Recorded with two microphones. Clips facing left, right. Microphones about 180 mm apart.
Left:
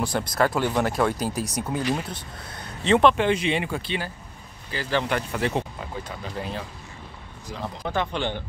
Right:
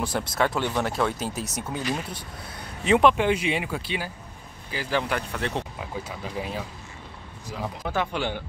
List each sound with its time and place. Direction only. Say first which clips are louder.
0.1 s speech: left 2 dB; 5° right (ahead or behind)
2.8 s speech: left 1 dB; 5° right (ahead or behind)
5.3 s speech: left 4 dB; 5° left (ahead or behind)
5.8 s speech: even; 5° right (ahead or behind)